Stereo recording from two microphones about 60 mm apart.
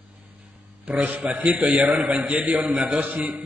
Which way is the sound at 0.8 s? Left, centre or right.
Right.